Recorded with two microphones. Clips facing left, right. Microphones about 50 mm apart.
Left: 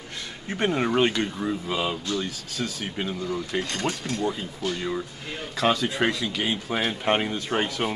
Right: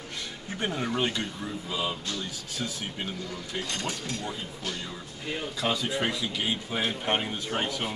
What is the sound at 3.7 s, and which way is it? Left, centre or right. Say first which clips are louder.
Speech: left 5 dB; left.